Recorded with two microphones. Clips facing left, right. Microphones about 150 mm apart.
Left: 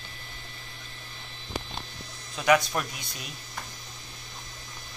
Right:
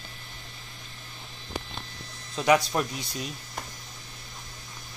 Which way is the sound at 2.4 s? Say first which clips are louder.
Right 1 dB; 25° right (ahead or behind).